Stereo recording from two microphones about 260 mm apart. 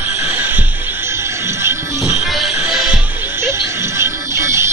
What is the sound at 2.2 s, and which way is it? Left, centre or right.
Music, centre.